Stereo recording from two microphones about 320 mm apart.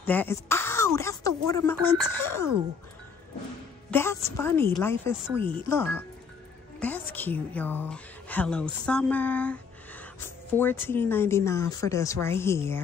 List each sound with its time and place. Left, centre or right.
0.0 s speech: centre
3.9 s a woman's voice: centre